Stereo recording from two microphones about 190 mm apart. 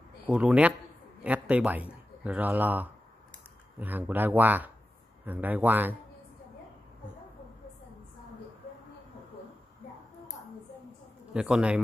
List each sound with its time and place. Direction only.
0.3 s a man's voice: 5° right (ahead or behind)
11.3 s a man's voice: 5° right (ahead or behind)